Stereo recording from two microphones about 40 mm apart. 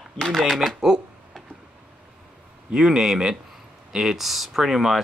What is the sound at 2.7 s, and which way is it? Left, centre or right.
Speech, centre.